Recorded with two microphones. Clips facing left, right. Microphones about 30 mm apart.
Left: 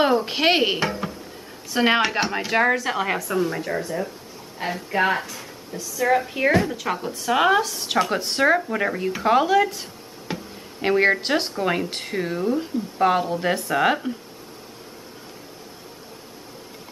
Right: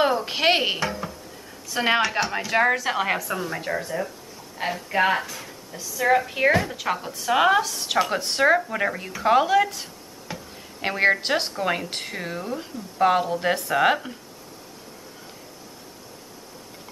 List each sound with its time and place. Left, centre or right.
0.0 s a woman's voice: centre
2.5 s a woman's voice: centre
10.3 s music: left
10.8 s a woman's voice: centre